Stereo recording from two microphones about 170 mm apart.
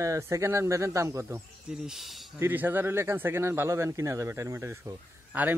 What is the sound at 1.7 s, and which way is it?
Speech, 5° right (ahead or behind).